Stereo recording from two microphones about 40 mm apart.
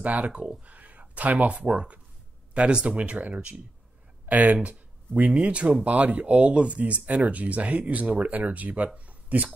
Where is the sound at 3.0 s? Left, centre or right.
Right.